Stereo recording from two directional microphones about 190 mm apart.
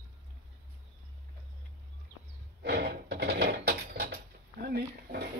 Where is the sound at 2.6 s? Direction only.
55° right (ahead or behind).